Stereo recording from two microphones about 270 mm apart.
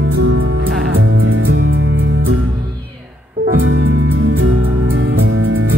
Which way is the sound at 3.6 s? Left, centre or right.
Right.